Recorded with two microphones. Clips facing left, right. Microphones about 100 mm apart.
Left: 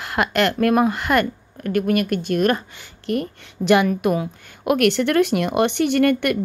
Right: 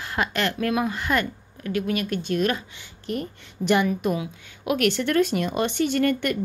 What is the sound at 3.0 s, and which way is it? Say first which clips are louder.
Speech: left 6 dB; 70° left (ahead or behind).